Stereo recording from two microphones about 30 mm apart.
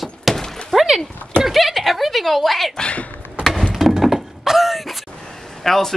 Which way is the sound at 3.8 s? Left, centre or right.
Centre.